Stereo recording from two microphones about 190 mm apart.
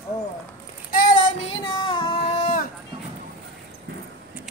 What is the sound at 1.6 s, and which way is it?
Music, 25° left (ahead or behind).